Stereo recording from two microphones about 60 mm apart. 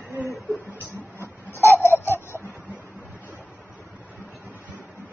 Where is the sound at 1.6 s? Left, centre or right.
Left.